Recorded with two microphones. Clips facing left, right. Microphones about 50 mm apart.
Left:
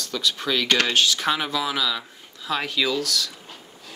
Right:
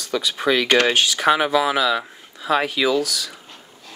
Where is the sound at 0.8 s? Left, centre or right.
Centre.